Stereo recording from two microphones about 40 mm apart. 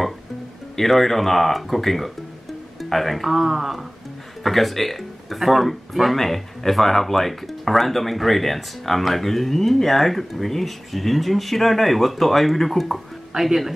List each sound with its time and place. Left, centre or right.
0.7 s speech: centre